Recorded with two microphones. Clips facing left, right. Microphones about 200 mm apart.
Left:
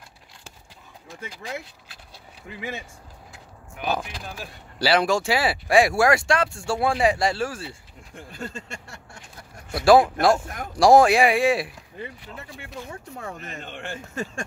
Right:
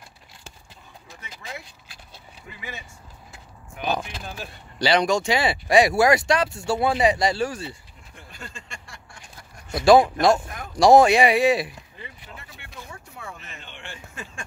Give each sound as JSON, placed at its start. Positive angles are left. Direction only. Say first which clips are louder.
{"t": 3.7, "sound": "speech", "louder": "even", "side_deg": 5}
{"t": 8.3, "sound": "speech", "louder": "left 7 dB", "side_deg": 40}
{"t": 9.7, "sound": "speech", "louder": "right 1 dB", "side_deg": 0}
{"t": 13.2, "sound": "speech", "louder": "left 5 dB", "side_deg": 40}